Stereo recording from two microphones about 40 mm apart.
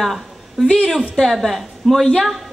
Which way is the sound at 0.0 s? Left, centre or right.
Centre.